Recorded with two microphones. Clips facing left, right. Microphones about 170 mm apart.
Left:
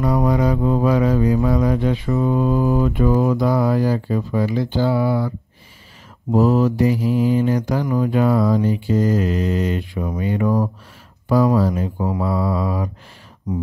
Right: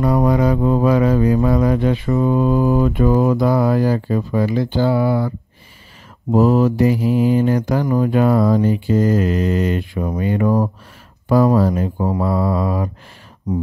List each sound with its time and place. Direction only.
0.0 s mantra: 55° right (ahead or behind)
2.0 s mantra: 40° right (ahead or behind)
2.3 s mantra: 60° right (ahead or behind)
6.3 s mantra: 55° right (ahead or behind)
13.5 s mantra: 35° right (ahead or behind)